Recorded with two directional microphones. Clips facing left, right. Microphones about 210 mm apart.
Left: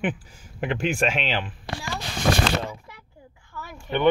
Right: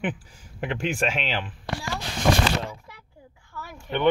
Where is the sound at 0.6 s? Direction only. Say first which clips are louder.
Left 2 dB; 15° left (ahead or behind).